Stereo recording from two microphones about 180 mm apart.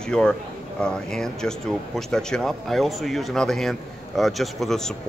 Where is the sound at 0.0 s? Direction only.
5° left (ahead or behind).